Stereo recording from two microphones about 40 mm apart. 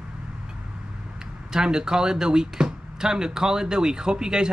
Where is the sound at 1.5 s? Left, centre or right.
Centre.